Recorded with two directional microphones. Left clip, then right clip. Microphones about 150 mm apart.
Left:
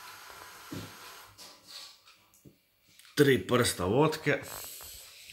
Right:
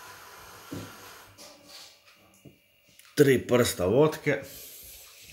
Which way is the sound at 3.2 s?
Centre (ahead or behind).